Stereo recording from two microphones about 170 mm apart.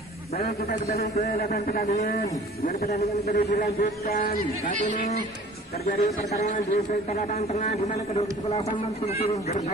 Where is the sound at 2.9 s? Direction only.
40° left (ahead or behind).